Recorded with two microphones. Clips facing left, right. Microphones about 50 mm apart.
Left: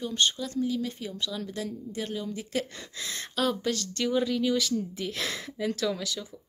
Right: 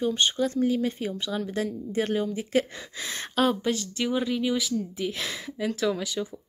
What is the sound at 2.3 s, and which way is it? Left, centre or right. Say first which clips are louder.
Speech: right 6 dB; right.